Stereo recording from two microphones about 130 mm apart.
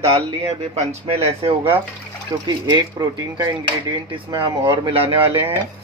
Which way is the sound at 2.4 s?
30° right (ahead or behind).